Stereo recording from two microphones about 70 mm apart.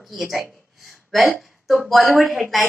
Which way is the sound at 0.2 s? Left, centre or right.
Centre.